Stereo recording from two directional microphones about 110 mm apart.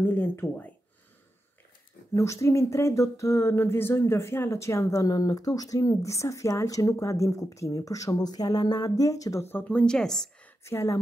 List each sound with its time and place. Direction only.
0.0 s speech: 20° left (ahead or behind)
2.1 s speech: 30° left (ahead or behind); by 10.5 s 5° left (ahead or behind)
10.6 s speech: 25° left (ahead or behind)